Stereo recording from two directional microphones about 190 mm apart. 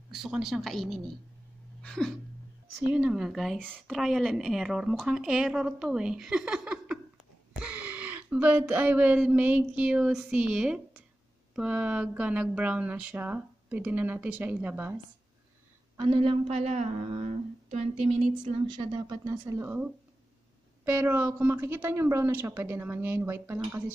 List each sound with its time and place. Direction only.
0.1 s a woman's voice: centre (ahead or behind)
1.8 s a sound: 5° left (ahead or behind)
2.9 s a woman's voice: 5° right (ahead or behind)
16.0 s a woman's voice: 25° right (ahead or behind); by 23.8 s 10° right (ahead or behind)